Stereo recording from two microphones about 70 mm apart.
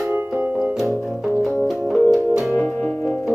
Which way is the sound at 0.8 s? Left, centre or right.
Centre.